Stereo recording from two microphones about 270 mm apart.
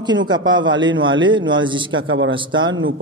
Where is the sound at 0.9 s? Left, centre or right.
Right.